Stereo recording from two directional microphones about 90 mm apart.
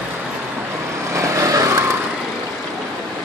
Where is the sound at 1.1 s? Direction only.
35° right (ahead or behind).